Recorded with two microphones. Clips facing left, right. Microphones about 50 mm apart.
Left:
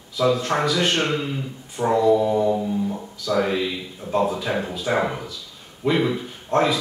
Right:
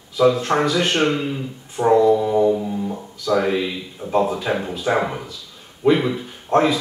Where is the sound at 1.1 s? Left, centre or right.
Centre.